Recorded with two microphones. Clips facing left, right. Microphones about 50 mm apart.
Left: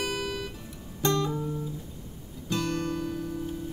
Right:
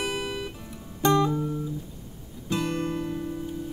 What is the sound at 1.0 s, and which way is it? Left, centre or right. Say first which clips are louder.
Guitar: right 5 dB; centre.